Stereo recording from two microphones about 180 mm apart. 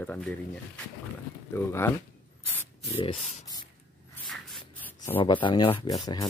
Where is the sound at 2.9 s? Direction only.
30° left (ahead or behind).